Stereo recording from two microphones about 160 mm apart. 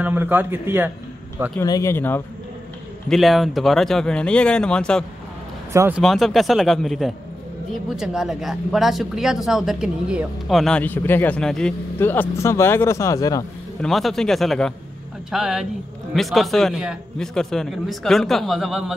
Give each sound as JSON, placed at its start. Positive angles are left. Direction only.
{"t": 0.0, "sound": "speech", "side_deg": -10}
{"t": 1.6, "sound": "speech", "side_deg": 20}
{"t": 3.1, "sound": "speech", "side_deg": 0}
{"t": 5.7, "sound": "speech", "side_deg": -15}
{"t": 5.9, "sound": "speech", "side_deg": 0}
{"t": 13.7, "sound": "speech", "side_deg": 0}